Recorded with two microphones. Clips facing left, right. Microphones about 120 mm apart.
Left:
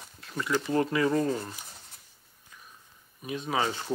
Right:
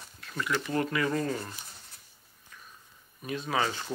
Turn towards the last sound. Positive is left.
turn(degrees=15)  # may be behind; listen again after turning